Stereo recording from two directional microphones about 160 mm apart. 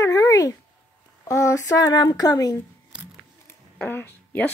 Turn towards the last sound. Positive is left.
turn(degrees=10)  # may be behind; listen again after turning